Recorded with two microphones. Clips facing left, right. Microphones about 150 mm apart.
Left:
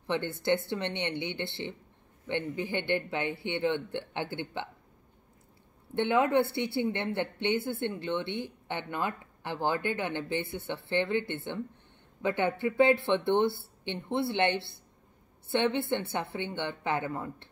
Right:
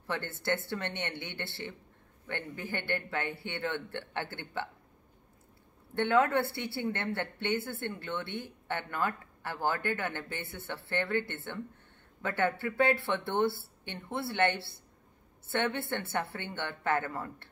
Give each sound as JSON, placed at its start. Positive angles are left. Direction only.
{"t": 0.0, "sound": "speech", "side_deg": 20}
{"t": 5.9, "sound": "speech", "side_deg": 20}